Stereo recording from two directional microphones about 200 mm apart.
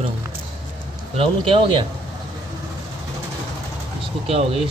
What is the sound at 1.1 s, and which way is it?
Speech, 25° right (ahead or behind).